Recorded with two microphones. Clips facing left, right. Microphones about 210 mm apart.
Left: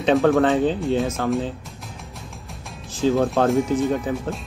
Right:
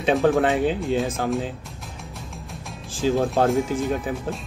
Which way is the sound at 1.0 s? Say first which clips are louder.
Left 2 dB; 30° right (ahead or behind).